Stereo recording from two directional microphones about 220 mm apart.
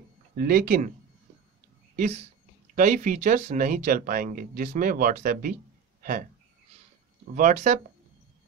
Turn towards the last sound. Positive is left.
turn(degrees=-30)  # may be behind; listen again after turning